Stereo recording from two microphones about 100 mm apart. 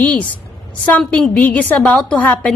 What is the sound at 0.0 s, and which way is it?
A woman's voice, 15° left (ahead or behind).